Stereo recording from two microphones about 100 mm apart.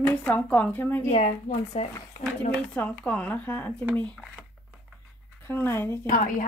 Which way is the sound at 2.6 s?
15° left (ahead or behind).